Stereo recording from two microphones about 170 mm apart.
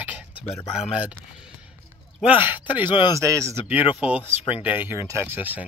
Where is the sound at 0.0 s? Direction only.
10° right (ahead or behind).